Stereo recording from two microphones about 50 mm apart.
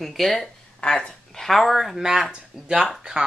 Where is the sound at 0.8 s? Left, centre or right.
Centre.